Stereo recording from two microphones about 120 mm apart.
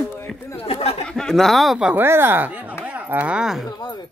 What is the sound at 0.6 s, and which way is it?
Chatter, 55° left (ahead or behind).